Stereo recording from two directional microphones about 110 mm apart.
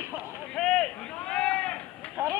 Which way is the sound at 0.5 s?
5° left (ahead or behind).